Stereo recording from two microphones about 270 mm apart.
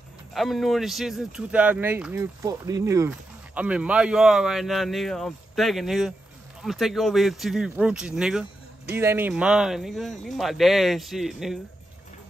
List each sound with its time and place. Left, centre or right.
0.3 s speech: centre